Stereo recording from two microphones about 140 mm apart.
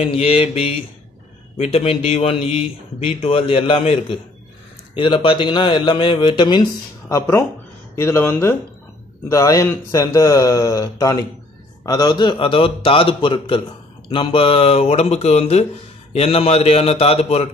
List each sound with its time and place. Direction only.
0.0 s a man's voice: 45° left (ahead or behind)